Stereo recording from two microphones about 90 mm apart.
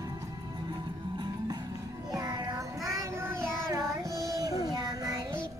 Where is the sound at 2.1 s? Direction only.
45° right (ahead or behind).